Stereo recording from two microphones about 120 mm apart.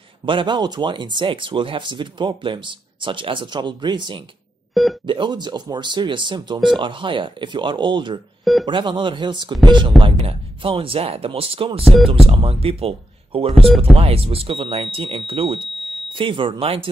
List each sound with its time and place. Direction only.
0.2 s speech: 45° right (ahead or behind)